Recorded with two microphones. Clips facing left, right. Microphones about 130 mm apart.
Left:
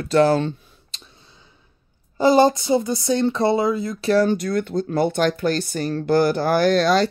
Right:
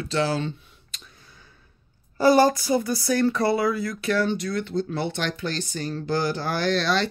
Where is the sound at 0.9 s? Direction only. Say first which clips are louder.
Left 1 dB; 30° left (ahead or behind).